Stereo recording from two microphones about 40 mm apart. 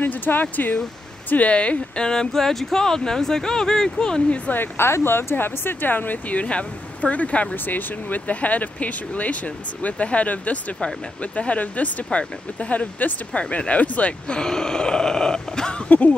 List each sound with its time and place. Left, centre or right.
0.0 s speech: left
1.3 s speech: left; by 4.2 s centre
4.7 s speech: left
5.3 s speech: left
6.4 s speech: left
7.5 s speech: left
14.2 s speech: left